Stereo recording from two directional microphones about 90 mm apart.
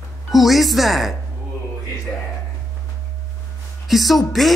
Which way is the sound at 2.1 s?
20° left (ahead or behind).